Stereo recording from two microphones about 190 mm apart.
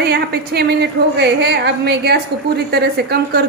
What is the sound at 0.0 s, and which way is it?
A woman's voice, 60° right (ahead or behind).